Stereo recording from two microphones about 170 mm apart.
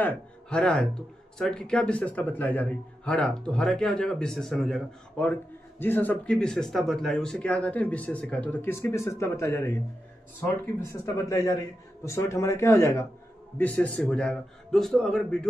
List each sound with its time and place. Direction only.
0.5 s a man's voice: 5° left (ahead or behind)
10.8 s a man's voice: 20° left (ahead or behind)